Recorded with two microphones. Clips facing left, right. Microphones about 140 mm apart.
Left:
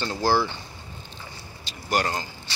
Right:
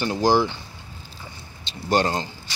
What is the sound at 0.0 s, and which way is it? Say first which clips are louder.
Speech: right 4 dB; 15° right (ahead or behind).